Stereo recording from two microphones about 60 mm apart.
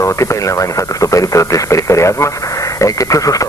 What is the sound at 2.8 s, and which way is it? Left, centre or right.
Speech, left.